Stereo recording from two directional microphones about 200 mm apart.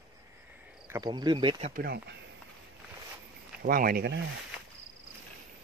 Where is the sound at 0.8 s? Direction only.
15° right (ahead or behind).